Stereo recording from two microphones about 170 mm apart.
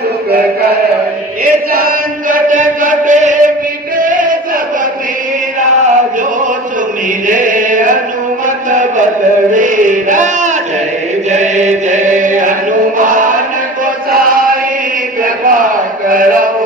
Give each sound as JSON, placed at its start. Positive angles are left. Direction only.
{"t": 1.4, "sound": "chant", "side_deg": -55}
{"t": 7.2, "sound": "chant", "side_deg": -50}
{"t": 8.6, "sound": "a sound", "side_deg": -50}
{"t": 9.5, "sound": "chant", "side_deg": -50}